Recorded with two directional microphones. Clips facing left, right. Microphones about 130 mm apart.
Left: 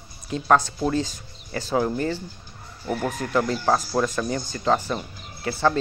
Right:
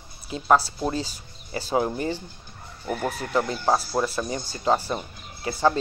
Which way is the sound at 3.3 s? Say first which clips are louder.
Left 1 dB; 20° right (ahead or behind).